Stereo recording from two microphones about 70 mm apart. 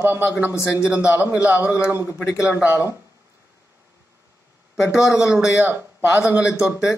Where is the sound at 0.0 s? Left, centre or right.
Right.